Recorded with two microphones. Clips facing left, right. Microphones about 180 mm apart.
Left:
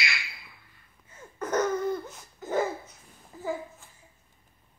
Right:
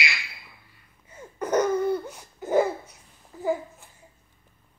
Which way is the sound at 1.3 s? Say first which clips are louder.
Right 4 dB; 10° right (ahead or behind).